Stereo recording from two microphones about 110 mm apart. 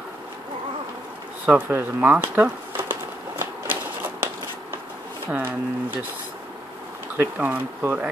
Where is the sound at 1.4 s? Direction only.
15° right (ahead or behind).